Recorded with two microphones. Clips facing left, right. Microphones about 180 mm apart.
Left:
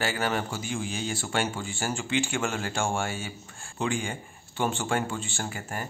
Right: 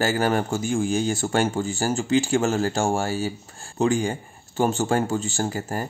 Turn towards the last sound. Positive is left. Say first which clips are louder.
# right 8 dB
turn(degrees=-35)  # may be behind; listen again after turning